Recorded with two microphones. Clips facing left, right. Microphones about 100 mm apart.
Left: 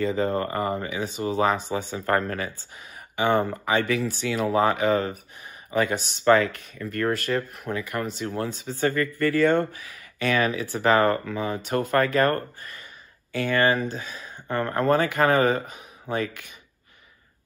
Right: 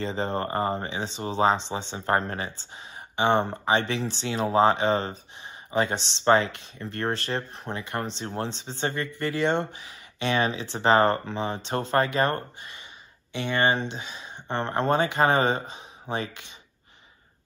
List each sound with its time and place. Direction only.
0.0 s speech: 30° right (ahead or behind)
13.5 s speech: 25° right (ahead or behind)